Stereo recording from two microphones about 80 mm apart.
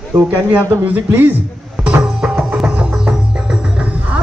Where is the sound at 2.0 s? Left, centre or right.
Centre.